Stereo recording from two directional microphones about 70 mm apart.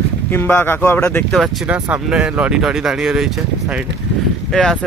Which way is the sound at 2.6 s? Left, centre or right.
Centre.